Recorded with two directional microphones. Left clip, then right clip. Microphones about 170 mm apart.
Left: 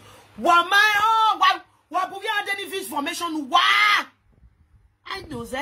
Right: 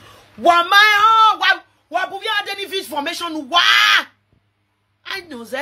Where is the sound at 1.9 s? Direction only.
Centre (ahead or behind).